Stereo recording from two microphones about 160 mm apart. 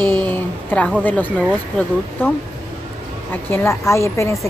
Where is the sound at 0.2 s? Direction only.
10° left (ahead or behind).